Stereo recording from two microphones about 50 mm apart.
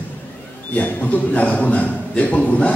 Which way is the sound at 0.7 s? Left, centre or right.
Left.